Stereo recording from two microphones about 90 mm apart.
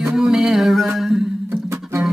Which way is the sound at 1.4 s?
30° right (ahead or behind).